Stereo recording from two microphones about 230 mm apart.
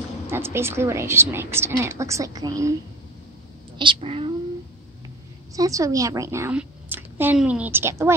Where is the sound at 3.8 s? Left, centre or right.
Right.